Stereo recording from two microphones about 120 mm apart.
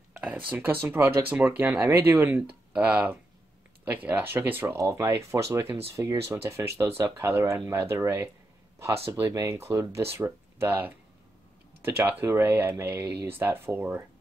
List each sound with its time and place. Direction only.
0.5 s speech: 15° right (ahead or behind)